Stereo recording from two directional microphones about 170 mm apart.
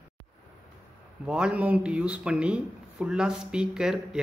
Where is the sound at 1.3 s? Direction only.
5° right (ahead or behind).